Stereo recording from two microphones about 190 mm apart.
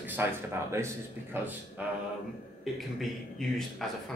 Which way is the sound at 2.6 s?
Centre (ahead or behind).